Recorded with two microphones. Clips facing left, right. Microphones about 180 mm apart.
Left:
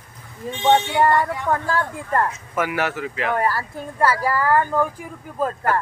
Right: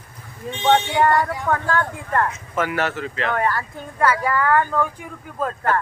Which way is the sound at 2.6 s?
10° left (ahead or behind).